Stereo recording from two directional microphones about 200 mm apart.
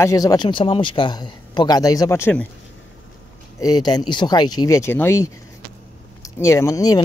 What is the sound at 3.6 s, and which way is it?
Speech, 20° left (ahead or behind).